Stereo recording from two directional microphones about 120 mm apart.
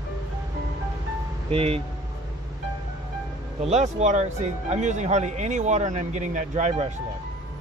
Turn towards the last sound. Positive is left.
turn(degrees=-80)